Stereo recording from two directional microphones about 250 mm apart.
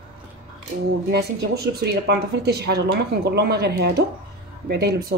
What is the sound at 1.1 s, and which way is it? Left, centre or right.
Speech, right.